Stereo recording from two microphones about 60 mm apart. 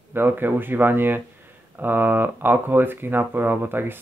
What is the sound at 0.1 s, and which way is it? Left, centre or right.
Speech, right.